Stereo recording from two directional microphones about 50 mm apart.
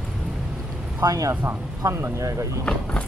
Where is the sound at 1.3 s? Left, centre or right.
Right.